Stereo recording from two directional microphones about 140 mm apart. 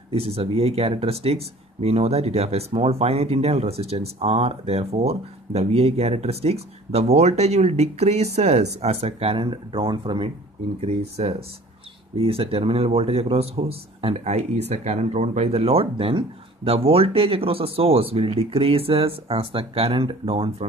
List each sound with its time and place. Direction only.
0.1 s speech: 45° right (ahead or behind)
10.8 s speech: 50° right (ahead or behind)